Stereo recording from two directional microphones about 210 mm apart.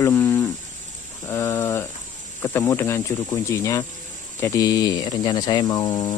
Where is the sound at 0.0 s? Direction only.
10° left (ahead or behind).